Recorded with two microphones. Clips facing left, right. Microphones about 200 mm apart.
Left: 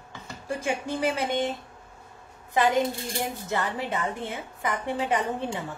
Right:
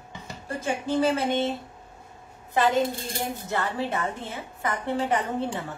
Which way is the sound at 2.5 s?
15° left (ahead or behind).